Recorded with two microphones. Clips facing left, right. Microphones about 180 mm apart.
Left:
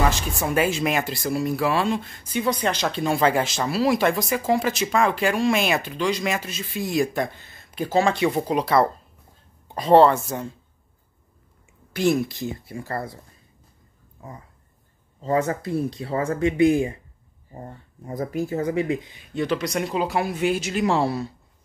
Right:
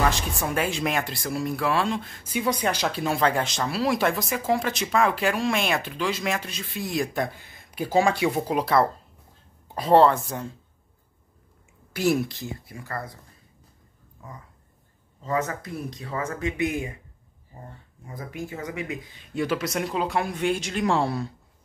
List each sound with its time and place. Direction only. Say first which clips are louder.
0.1 s speech: left 3 dB; centre (ahead or behind)
2.3 s speech: left 2 dB; 10° right (ahead or behind)
7.3 s speech: left 2 dB; 10° right (ahead or behind)
11.9 s speech: left 2 dB; 10° right (ahead or behind)
12.6 s speech: left 5 dB; 30° left (ahead or behind)
15.2 s speech: left 5 dB; 30° left (ahead or behind)
18.0 s speech: left 8 dB; 40° left (ahead or behind)
19.3 s speech: left 2 dB; 5° right (ahead or behind)